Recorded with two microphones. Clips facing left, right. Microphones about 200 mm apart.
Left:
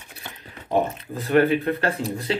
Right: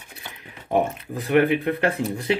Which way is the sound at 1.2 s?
15° right (ahead or behind).